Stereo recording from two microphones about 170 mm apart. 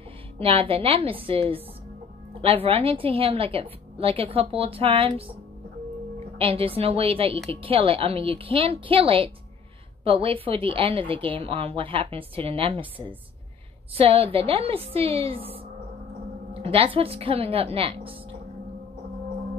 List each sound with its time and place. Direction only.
0.4 s a woman's voice: 35° right (ahead or behind)
13.9 s a woman's voice: 35° right (ahead or behind)
16.6 s a woman's voice: 35° right (ahead or behind)